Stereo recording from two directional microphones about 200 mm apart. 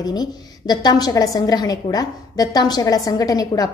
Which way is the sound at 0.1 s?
20° left (ahead or behind).